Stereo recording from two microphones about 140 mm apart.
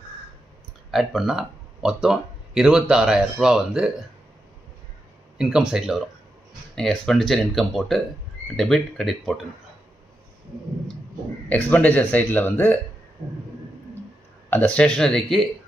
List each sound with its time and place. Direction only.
0.9 s speech: 5° right (ahead or behind)
5.4 s speech: 5° right (ahead or behind)
11.4 s speech: 10° left (ahead or behind)
14.5 s speech: 10° left (ahead or behind)